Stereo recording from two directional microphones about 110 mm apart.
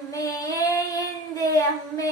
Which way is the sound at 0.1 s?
35° left (ahead or behind).